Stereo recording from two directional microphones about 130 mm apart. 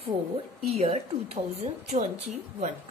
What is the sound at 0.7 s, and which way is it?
Speech, 55° right (ahead or behind).